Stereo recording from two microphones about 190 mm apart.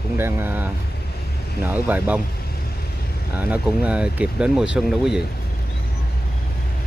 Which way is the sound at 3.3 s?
10° right (ahead or behind).